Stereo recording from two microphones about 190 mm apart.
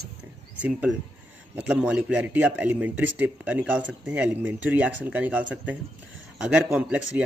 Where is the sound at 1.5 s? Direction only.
5° right (ahead or behind).